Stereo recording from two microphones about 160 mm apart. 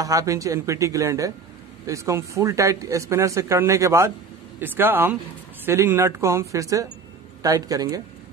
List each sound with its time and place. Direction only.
0.0 s speech: 20° right (ahead or behind)